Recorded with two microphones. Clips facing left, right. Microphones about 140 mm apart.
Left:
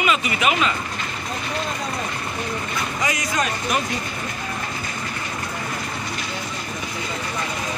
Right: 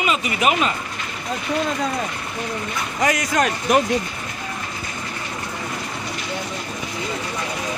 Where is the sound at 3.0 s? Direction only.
60° right (ahead or behind).